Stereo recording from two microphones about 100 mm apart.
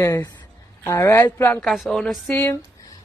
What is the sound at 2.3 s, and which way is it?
Speech, 25° left (ahead or behind).